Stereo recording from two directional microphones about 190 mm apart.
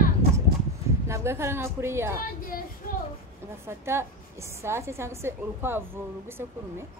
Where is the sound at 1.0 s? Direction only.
15° right (ahead or behind).